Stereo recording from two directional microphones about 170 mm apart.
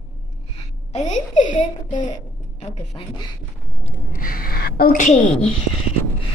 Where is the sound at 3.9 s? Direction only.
55° left (ahead or behind).